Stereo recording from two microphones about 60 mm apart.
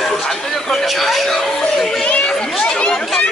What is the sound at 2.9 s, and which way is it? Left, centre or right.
Chatter, centre.